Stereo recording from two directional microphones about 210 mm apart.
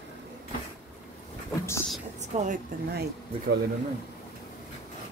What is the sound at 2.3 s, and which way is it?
Speech, 35° right (ahead or behind).